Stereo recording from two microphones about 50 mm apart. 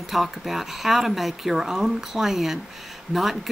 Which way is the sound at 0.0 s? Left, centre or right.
Centre.